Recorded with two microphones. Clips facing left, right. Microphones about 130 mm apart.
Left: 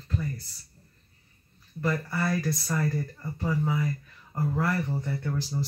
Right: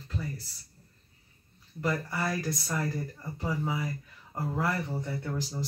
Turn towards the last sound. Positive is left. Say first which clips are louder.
# left 3 dB
turn(degrees=-10)  # may be behind; listen again after turning